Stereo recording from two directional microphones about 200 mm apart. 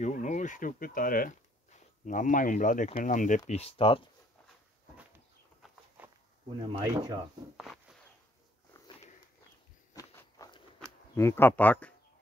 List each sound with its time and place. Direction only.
0.0 s speech: 40° left (ahead or behind)
5.6 s a sound: centre (ahead or behind)
6.7 s speech: 20° right (ahead or behind)
7.5 s a sound: centre (ahead or behind)
9.9 s walk: 15° left (ahead or behind)
10.8 s speech: 10° left (ahead or behind)